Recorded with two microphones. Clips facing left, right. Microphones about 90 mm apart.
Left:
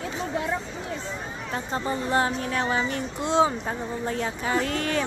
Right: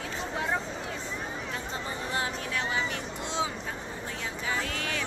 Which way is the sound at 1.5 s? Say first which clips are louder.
Left 7 dB; 40° left (ahead or behind).